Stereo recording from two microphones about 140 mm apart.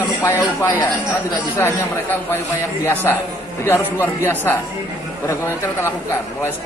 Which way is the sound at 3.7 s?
15° left (ahead or behind).